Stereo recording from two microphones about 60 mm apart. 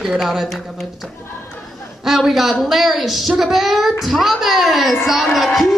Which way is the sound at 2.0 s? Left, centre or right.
Centre.